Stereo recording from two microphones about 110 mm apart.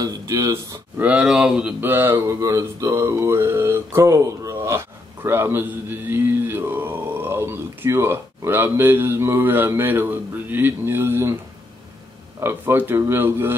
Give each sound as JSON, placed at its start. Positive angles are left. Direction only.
{"t": 0.0, "sound": "speech", "side_deg": -30}
{"t": 0.9, "sound": "speech", "side_deg": -10}
{"t": 1.8, "sound": "mantra", "side_deg": -20}
{"t": 12.4, "sound": "mantra", "side_deg": -20}